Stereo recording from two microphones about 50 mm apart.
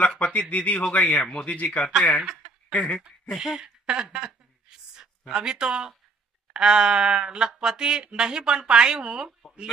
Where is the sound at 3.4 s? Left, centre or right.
Centre.